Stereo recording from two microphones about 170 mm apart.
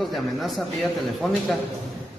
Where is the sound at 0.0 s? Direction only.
Centre (ahead or behind).